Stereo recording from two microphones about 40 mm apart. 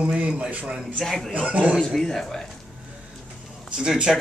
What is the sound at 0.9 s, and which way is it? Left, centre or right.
Speech, centre.